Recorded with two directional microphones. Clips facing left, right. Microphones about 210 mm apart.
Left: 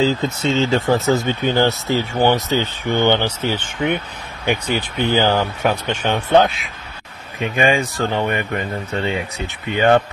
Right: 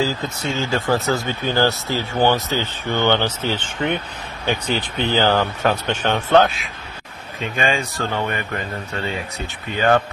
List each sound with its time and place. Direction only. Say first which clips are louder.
0.0 s speech: left 5 dB; 20° left (ahead or behind)